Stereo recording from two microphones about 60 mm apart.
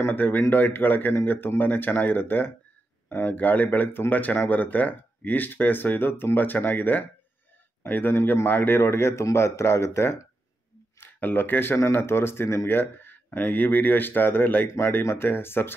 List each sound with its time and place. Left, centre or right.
0.1 s speech: left
8.5 s speech: left
8.7 s speech: left
11.0 s speech: left